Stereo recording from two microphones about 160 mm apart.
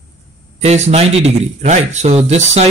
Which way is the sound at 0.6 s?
45° right (ahead or behind).